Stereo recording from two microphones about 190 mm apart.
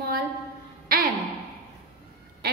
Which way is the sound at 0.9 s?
50° right (ahead or behind).